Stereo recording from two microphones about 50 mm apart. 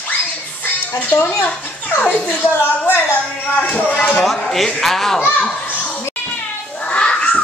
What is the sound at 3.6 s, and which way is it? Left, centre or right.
Speech, left.